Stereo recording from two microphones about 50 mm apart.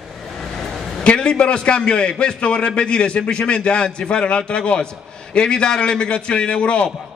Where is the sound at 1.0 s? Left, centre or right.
Centre.